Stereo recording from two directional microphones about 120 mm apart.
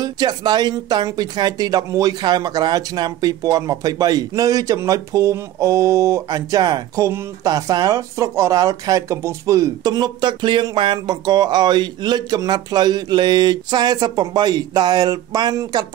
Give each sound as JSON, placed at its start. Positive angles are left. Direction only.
{"t": 0.0, "sound": "speech", "side_deg": -35}